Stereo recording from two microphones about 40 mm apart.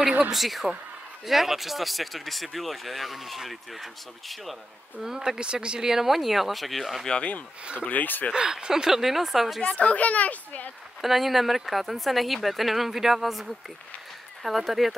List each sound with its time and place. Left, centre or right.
0.3 s speech: centre
5.0 s speech: centre
7.1 s speech: left
7.8 s speech: left
8.3 s speech: right; by 9.7 s centre
9.7 s a child's voice: left
11.0 s speech: centre